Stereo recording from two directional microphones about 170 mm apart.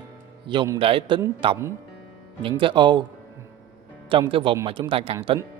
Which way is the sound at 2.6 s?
25° right (ahead or behind).